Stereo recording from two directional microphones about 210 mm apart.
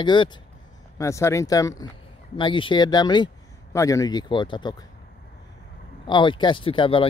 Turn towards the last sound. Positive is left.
turn(degrees=25)  # may be behind; listen again after turning